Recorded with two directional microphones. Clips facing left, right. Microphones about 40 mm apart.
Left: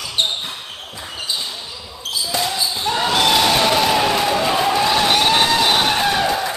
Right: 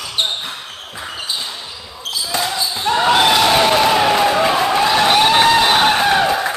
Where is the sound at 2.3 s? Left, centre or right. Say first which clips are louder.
Right 2 dB; centre.